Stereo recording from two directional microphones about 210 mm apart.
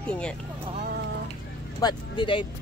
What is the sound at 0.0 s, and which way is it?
Speech, 5° left (ahead or behind).